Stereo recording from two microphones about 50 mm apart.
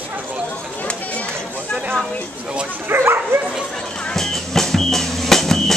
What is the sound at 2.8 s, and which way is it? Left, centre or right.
Speech, right.